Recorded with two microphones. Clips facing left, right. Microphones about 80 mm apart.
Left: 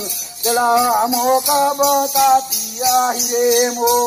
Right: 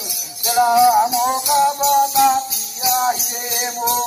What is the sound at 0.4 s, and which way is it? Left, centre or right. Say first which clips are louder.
Music: right 1 dB; left.